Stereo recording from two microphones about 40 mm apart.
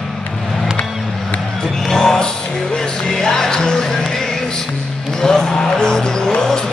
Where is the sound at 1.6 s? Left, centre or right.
Centre.